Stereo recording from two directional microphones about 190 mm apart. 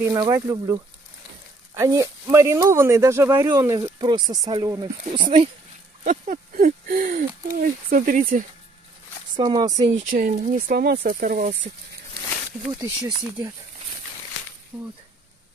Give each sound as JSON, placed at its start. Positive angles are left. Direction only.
{"t": 0.0, "sound": "speech", "side_deg": -15}
{"t": 1.8, "sound": "speech", "side_deg": -15}
{"t": 6.0, "sound": "speech", "side_deg": -40}
{"t": 9.4, "sound": "speech", "side_deg": -20}
{"t": 9.9, "sound": "speech", "side_deg": -45}
{"t": 12.7, "sound": "speech", "side_deg": -15}
{"t": 14.7, "sound": "speech", "side_deg": -5}